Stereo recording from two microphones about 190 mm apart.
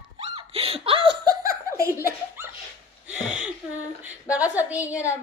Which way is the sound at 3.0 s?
5° right (ahead or behind).